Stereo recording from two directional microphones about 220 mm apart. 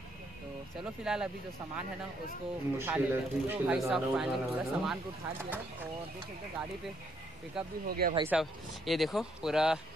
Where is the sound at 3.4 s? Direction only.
5° right (ahead or behind).